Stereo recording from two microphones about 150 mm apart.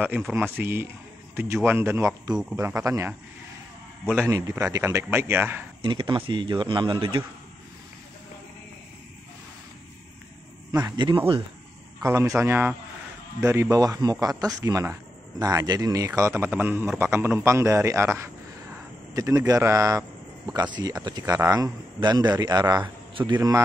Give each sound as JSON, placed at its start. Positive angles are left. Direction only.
{"t": 0.0, "sound": "a man's voice", "side_deg": -10}
{"t": 4.0, "sound": "a man's voice", "side_deg": 5}
{"t": 4.3, "sound": "a man's voice", "side_deg": -20}
{"t": 5.8, "sound": "speech", "side_deg": -30}
{"t": 10.8, "sound": "speech", "side_deg": -30}
{"t": 12.0, "sound": "a man's voice", "side_deg": -20}